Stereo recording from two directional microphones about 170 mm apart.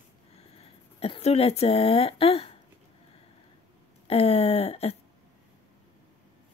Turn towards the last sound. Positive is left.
turn(degrees=35)  # may be behind; listen again after turning